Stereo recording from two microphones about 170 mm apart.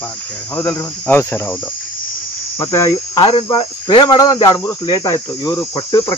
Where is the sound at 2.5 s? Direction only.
20° left (ahead or behind).